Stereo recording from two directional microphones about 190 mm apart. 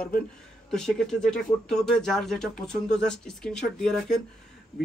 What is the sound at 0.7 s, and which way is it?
Speech, 5° left (ahead or behind).